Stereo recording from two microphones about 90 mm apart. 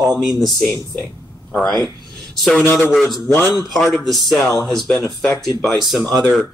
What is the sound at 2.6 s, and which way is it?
Speech, 25° left (ahead or behind).